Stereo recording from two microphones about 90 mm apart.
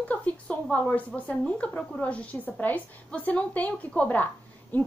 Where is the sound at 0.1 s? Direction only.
15° left (ahead or behind).